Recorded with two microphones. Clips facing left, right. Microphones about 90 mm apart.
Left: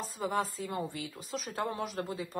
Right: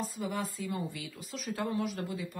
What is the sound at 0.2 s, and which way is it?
Speech, 40° left (ahead or behind).